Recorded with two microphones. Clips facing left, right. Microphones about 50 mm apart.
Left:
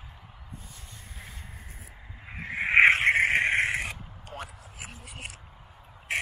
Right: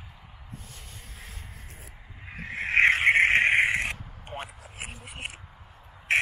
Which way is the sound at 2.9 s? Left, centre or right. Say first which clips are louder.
Right 2 dB; centre.